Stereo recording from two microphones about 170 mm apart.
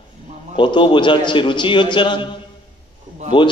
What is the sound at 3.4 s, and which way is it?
Speech, 25° left (ahead or behind).